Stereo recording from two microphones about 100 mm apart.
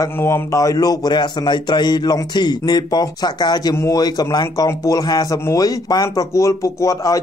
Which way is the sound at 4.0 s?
40° left (ahead or behind).